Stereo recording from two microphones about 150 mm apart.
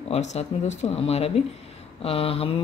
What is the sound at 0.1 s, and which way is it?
Speech, 50° left (ahead or behind).